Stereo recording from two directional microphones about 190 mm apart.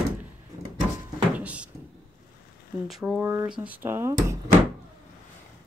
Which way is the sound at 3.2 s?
20° right (ahead or behind).